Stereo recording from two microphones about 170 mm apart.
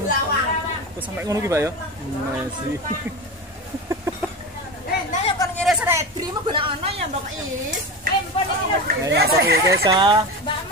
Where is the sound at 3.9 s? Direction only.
15° right (ahead or behind).